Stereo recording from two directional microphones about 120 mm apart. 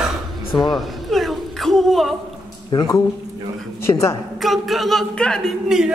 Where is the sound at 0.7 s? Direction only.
Centre (ahead or behind).